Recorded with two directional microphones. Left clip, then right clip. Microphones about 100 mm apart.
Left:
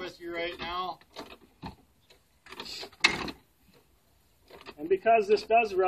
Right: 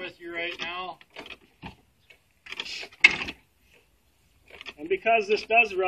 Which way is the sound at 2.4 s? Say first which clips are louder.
Right 6 dB; 20° left (ahead or behind).